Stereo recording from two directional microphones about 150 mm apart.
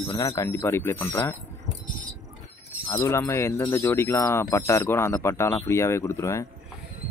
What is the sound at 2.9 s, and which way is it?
Speech, 20° left (ahead or behind).